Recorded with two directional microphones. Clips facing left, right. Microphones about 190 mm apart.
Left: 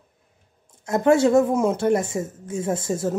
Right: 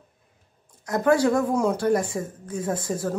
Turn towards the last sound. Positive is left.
turn(degrees=25)  # may be behind; listen again after turning